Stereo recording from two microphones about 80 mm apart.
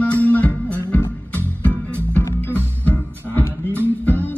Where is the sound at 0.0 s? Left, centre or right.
Centre.